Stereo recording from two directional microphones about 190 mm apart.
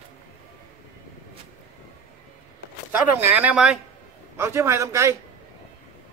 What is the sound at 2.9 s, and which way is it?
Speech, 10° right (ahead or behind).